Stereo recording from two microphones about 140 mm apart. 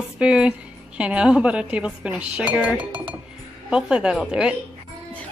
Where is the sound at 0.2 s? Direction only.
5° right (ahead or behind).